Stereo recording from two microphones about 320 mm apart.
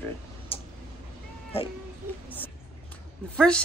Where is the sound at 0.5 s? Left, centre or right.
Centre.